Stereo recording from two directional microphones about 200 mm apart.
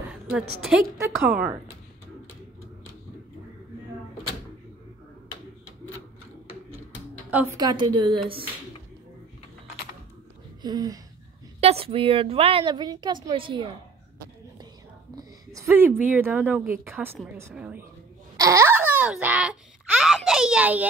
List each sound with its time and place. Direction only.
0.6 s a woman's voice: 5° right (ahead or behind)
7.2 s a woman's voice: 5° right (ahead or behind)
7.5 s a woman's voice: 20° right (ahead or behind)
10.6 s a woman's voice: 20° right (ahead or behind)
15.1 s a woman's voice: 15° right (ahead or behind)
18.4 s babbling: 15° right (ahead or behind)